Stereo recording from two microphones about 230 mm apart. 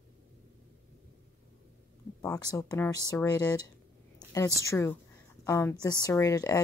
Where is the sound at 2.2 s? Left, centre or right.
Centre.